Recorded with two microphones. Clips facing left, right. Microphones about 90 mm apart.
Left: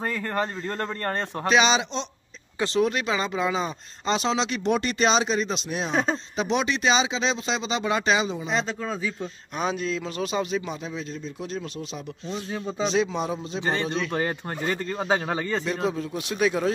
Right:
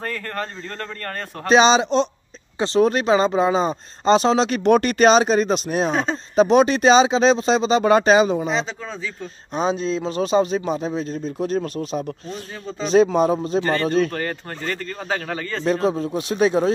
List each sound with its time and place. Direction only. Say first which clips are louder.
0.0 s speech: left 1 dB; 15° left (ahead or behind)
1.5 s speech: right 7 dB; 35° right (ahead or behind)
8.5 s speech: right 2 dB; centre (ahead or behind)
9.6 s speech: right 5 dB; 30° right (ahead or behind); by 14.1 s 45° right (ahead or behind)
14.1 s speech: even; 15° left (ahead or behind)
15.6 s speech: right 7 dB; 35° right (ahead or behind)